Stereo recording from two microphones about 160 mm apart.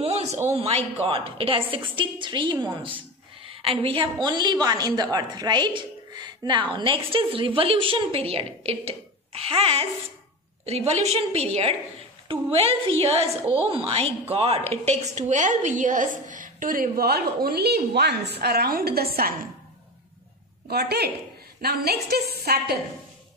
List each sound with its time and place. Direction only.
0.0 s a sound: 40° right (ahead or behind)
0.6 s a woman's voice: 40° right (ahead or behind); by 19.4 s 70° right (ahead or behind)
20.6 s a woman's voice: 80° right